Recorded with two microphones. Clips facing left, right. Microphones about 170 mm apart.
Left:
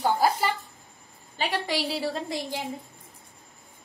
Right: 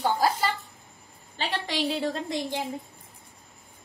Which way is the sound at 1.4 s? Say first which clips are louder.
Left 1 dB; 10° left (ahead or behind).